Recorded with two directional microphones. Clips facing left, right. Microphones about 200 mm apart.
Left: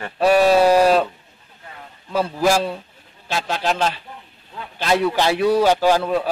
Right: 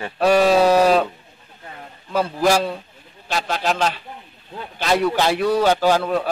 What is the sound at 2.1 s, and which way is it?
A man's voice, 5° left (ahead or behind).